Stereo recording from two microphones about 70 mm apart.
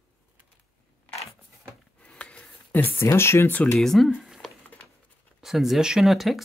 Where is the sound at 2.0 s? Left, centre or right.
Centre.